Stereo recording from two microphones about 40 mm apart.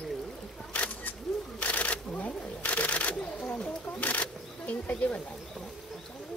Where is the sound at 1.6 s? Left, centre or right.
Left.